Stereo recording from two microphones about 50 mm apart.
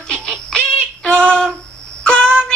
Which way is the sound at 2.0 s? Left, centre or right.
Centre.